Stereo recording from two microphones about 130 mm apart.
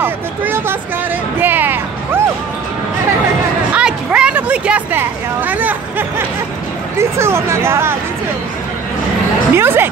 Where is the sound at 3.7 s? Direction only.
10° right (ahead or behind).